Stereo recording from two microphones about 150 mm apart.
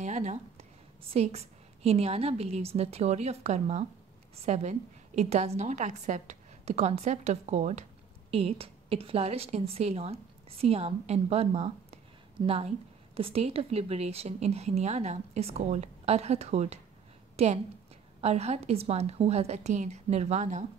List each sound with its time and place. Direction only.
0.0 s a woman's voice: 50° right (ahead or behind)